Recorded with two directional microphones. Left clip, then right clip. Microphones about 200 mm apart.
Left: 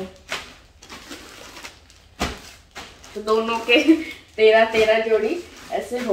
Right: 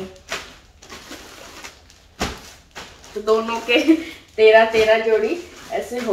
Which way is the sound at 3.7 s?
15° left (ahead or behind).